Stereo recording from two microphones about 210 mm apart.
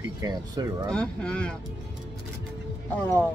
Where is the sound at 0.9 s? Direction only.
5° left (ahead or behind).